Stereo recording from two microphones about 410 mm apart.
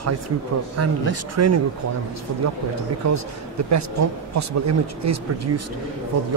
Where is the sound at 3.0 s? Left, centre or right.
Right.